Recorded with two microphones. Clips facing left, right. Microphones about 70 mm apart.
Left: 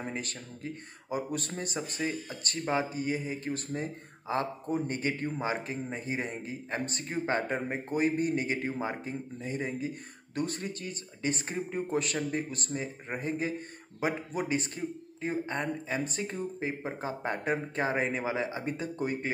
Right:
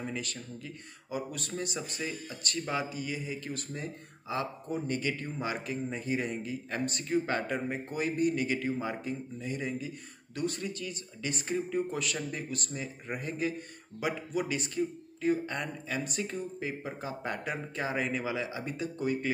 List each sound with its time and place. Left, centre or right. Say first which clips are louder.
0.0 s speech: even; left